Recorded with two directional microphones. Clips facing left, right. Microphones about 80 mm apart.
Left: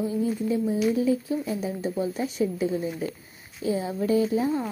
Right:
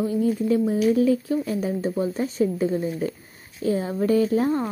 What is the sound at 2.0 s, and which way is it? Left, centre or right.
A woman's voice, right.